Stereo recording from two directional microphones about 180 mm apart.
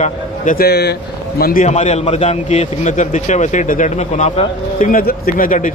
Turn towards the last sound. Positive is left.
turn(degrees=45)  # may be behind; listen again after turning